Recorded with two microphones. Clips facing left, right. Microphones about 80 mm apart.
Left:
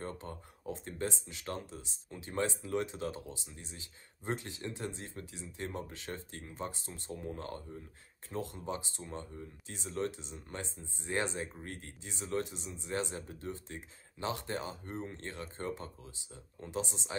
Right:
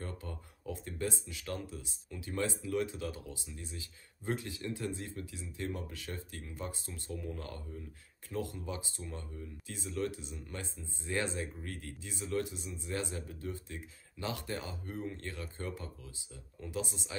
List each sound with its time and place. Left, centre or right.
0.0 s speech: left